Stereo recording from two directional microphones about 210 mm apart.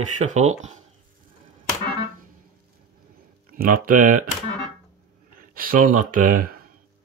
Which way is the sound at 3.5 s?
40° right (ahead or behind).